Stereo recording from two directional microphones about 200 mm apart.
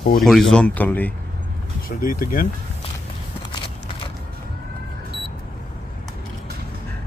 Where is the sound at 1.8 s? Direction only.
45° left (ahead or behind).